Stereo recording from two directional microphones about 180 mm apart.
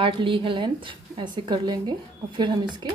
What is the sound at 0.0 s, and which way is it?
A woman's voice, 30° right (ahead or behind).